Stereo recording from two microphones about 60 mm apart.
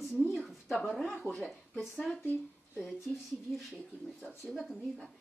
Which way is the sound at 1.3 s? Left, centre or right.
Left.